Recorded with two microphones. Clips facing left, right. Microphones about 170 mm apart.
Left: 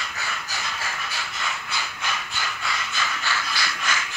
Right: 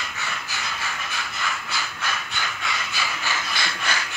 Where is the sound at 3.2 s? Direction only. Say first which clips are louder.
Even; 20° right (ahead or behind).